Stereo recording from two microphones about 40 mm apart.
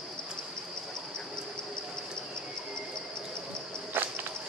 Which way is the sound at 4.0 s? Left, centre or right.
Right.